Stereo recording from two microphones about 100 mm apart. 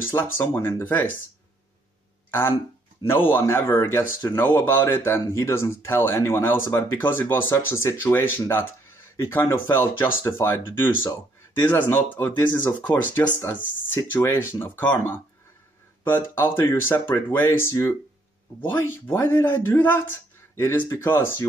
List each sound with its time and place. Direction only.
0.0 s speech: 20° left (ahead or behind)
3.1 s speech: 20° left (ahead or behind)
16.3 s speech: 25° left (ahead or behind)